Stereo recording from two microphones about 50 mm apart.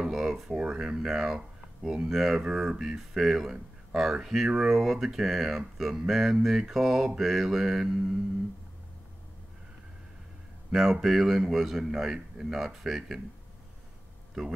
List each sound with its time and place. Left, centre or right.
0.0 s a sound: centre
0.6 s speech: centre
10.7 s speech: centre